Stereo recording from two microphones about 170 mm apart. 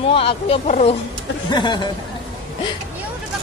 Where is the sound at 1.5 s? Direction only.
25° left (ahead or behind).